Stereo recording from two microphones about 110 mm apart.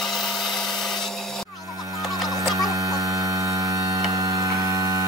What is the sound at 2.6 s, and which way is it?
Mains hum, 30° right (ahead or behind).